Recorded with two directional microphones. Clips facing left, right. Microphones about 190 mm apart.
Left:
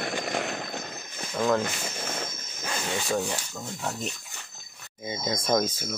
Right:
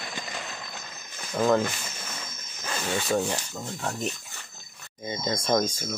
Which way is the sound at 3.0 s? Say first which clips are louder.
Right 3 dB; 5° right (ahead or behind).